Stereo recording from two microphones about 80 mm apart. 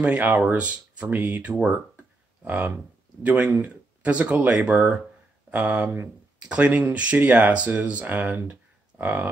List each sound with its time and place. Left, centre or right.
0.0 s speech: centre